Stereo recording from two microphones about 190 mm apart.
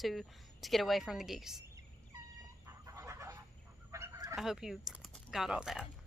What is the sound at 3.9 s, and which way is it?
Goose, 15° right (ahead or behind).